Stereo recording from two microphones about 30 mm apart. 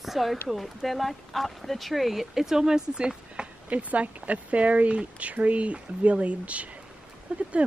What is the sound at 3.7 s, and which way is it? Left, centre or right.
Speech, right.